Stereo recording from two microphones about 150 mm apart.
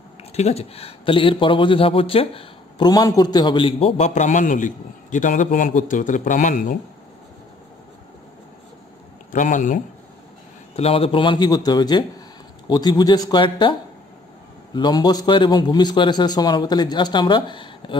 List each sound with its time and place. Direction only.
0.2 s speech: 45° left (ahead or behind)
2.9 s a man's voice: 25° left (ahead or behind); by 6.8 s 60° left (ahead or behind)
9.3 s a man's voice: 60° left (ahead or behind)
10.8 s a man's voice: 40° left (ahead or behind)